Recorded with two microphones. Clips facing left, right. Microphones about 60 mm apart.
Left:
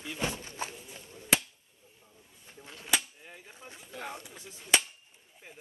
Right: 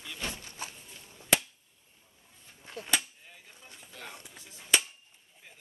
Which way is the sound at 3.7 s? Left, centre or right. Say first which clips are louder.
Left 6 dB; left.